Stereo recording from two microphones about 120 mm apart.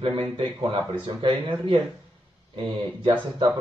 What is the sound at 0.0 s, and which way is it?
Speech, 55° right (ahead or behind).